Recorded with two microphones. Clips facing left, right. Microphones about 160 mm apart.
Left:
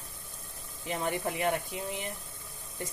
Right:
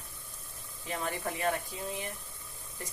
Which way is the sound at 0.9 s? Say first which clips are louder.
Left 3 dB; 20° left (ahead or behind).